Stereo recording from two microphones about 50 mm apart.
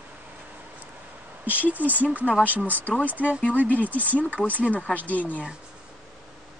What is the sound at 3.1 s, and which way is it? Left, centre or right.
Speech, right.